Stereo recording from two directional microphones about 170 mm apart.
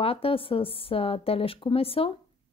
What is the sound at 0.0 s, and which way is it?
Speech, 35° left (ahead or behind).